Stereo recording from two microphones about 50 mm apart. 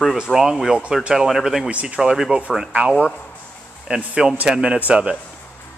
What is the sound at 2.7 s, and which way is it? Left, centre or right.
Speech, right.